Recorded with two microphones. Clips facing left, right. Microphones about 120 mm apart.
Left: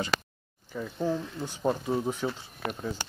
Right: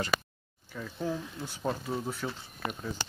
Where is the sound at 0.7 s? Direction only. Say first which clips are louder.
Left 4 dB; 10° left (ahead or behind).